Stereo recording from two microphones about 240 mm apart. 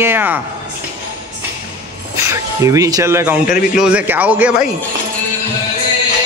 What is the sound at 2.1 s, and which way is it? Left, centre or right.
A man's voice, centre.